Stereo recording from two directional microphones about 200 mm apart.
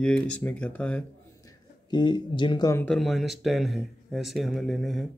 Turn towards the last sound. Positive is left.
turn(degrees=0)  # may be behind; listen again after turning